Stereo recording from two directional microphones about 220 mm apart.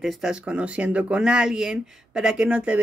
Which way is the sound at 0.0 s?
5° right (ahead or behind).